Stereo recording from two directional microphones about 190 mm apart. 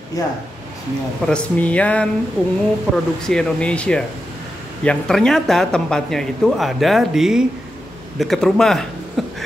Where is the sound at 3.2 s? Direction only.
5° left (ahead or behind).